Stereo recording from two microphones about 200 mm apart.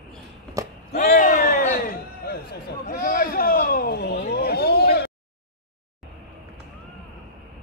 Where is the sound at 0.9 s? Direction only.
40° left (ahead or behind).